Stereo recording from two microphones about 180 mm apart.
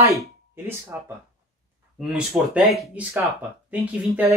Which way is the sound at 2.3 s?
Centre (ahead or behind).